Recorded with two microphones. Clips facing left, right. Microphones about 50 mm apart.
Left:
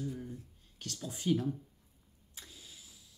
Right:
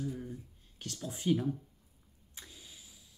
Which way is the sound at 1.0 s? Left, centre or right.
Centre.